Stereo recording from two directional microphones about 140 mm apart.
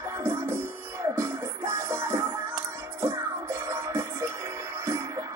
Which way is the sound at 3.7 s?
20° right (ahead or behind).